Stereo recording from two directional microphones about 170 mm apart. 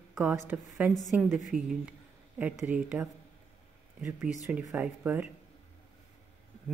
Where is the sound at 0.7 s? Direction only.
5° right (ahead or behind).